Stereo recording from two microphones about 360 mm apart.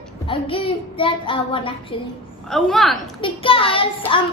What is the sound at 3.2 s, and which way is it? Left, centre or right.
A child's voice, centre.